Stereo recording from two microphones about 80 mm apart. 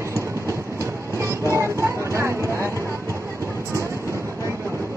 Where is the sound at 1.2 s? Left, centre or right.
Right.